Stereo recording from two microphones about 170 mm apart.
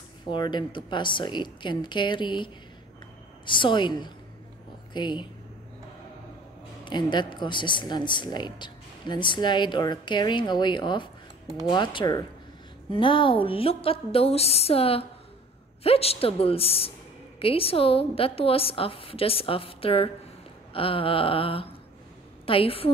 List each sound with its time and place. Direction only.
0.3 s a woman's voice: 25° left (ahead or behind)
6.8 s a woman's voice: 25° left (ahead or behind)